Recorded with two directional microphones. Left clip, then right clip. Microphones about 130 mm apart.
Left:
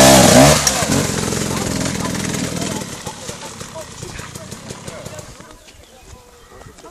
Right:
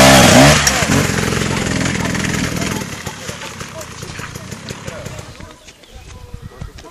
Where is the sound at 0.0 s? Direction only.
10° left (ahead or behind).